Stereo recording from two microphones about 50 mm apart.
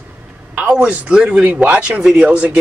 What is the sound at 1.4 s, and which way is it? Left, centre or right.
A man's voice, right.